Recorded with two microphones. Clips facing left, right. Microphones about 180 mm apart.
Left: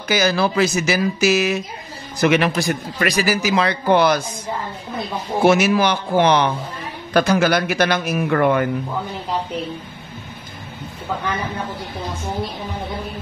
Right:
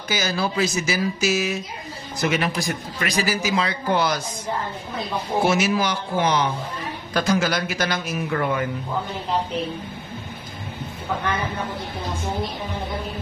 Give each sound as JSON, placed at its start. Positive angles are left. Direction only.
{"t": 0.1, "sound": "a man's voice", "side_deg": 70}
{"t": 5.4, "sound": "speech", "side_deg": 60}